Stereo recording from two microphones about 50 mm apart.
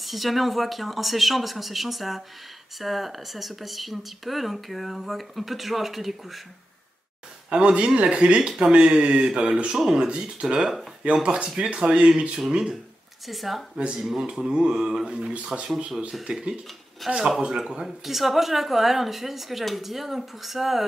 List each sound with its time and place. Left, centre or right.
0.0 s speech: centre
7.4 s speech: right
8.4 s speech: centre
13.3 s speech: centre
14.5 s speech: centre
17.0 s speech: centre
17.6 s speech: centre